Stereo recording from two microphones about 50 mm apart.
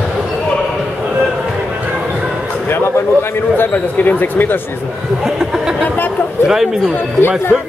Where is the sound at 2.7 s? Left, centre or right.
Left.